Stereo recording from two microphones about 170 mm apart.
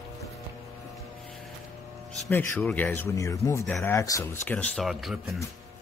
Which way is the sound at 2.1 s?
5° left (ahead or behind).